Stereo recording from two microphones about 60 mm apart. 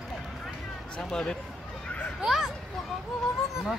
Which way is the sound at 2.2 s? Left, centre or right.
Centre.